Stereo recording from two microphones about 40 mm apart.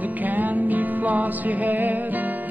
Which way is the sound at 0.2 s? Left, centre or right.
Right.